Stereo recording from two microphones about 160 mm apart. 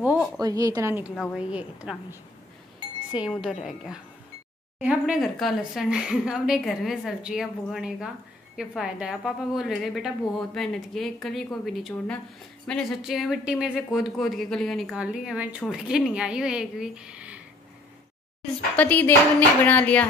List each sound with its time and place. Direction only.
0.4 s a woman's voice: 20° right (ahead or behind); by 17.4 s 5° right (ahead or behind)
18.8 s speech: 10° left (ahead or behind)